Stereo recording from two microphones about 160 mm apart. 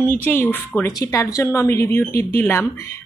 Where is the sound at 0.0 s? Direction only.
10° left (ahead or behind).